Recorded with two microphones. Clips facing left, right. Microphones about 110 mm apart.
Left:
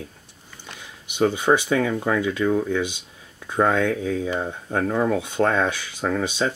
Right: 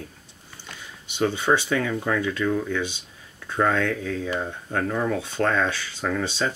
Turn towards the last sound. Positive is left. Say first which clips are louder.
# left 2 dB
turn(degrees=15)  # may be behind; listen again after turning